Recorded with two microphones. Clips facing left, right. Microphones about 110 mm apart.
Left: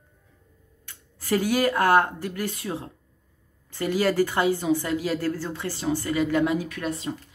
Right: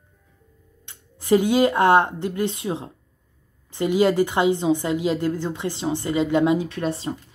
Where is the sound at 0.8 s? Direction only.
20° right (ahead or behind).